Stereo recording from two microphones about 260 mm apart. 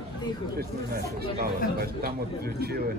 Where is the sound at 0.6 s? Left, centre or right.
Right.